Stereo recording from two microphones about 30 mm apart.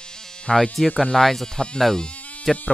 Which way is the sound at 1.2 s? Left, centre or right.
Centre.